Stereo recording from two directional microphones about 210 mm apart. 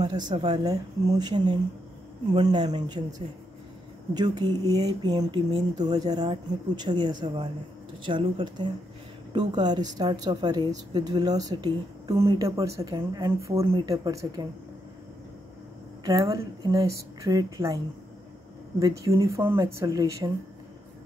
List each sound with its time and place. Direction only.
0.0 s a woman's voice: 20° right (ahead or behind)
16.0 s speech: 15° right (ahead or behind)
18.8 s speech: 15° right (ahead or behind)